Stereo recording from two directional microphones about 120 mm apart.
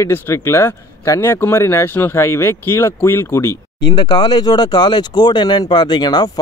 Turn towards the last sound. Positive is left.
turn(degrees=35)  # may be behind; listen again after turning